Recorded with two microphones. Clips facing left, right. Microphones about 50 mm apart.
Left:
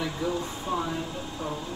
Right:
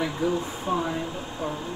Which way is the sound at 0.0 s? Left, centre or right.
Right.